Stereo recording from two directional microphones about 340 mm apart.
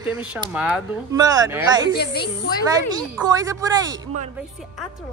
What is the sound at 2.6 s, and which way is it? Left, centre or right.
A woman's voice, centre.